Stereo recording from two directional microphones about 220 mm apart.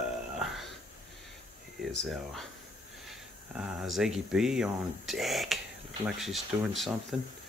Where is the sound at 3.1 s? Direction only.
Centre (ahead or behind).